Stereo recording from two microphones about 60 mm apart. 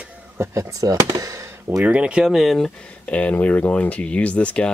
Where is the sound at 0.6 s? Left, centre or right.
Right.